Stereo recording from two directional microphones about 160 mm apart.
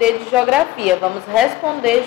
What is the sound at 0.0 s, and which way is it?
A woman's voice, 5° right (ahead or behind).